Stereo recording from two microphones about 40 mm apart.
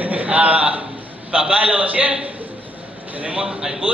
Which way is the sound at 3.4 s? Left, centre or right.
Centre.